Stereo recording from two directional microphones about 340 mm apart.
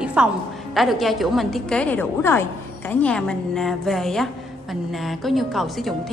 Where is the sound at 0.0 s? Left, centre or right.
Centre.